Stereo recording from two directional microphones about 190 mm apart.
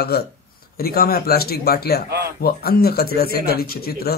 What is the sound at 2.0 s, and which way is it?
Speech, 60° right (ahead or behind).